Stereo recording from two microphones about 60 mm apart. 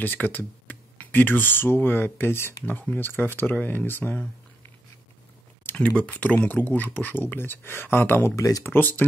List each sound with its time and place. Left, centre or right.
0.0 s speech: left
2.6 s speech: left
5.7 s speech: left
8.4 s speech: left
8.6 s speech: left